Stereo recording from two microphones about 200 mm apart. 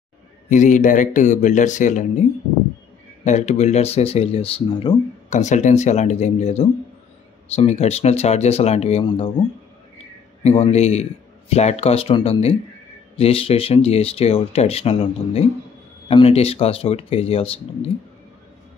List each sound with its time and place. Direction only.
0.5 s speech: 40° left (ahead or behind)
3.3 s speech: 35° left (ahead or behind)
10.4 s speech: 30° left (ahead or behind)